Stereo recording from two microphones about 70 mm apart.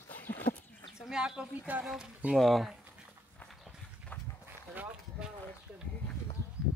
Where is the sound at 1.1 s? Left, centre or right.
Centre.